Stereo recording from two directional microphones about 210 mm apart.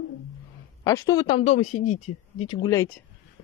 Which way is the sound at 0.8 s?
15° left (ahead or behind).